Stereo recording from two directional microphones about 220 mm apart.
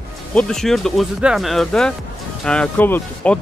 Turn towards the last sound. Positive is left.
turn(degrees=5)  # may be behind; listen again after turning